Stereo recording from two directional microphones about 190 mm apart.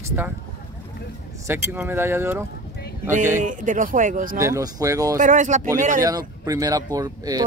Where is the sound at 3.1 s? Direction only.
40° right (ahead or behind).